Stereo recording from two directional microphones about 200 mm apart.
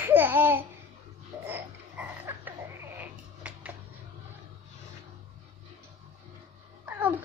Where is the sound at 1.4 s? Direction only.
10° right (ahead or behind).